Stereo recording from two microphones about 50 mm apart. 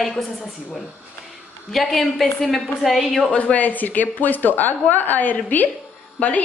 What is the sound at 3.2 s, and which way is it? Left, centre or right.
A woman's voice, left.